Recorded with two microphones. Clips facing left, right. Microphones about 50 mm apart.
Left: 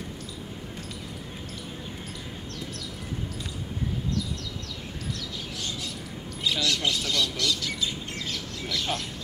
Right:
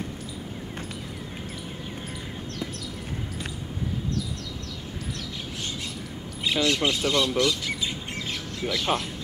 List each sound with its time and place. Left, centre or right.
6.4 s speech: right